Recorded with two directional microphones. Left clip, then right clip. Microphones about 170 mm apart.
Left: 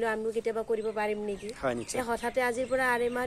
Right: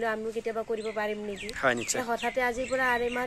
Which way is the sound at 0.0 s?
25° left (ahead or behind).